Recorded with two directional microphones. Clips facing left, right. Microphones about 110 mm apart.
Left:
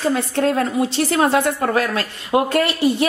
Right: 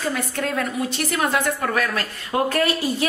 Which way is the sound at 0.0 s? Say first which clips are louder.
Left 7 dB; 30° left (ahead or behind).